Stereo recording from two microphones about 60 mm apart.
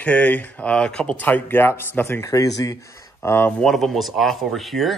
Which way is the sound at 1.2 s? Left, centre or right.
Left.